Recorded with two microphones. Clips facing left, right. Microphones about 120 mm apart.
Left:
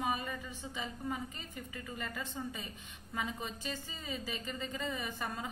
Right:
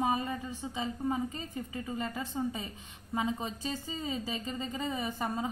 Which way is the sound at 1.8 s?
25° right (ahead or behind).